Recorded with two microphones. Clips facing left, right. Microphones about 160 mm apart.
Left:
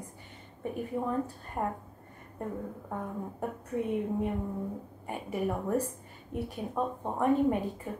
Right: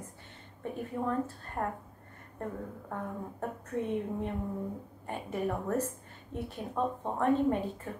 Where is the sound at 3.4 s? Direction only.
10° left (ahead or behind).